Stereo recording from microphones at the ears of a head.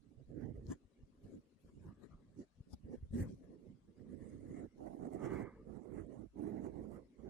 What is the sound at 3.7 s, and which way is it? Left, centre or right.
Wild animals, right.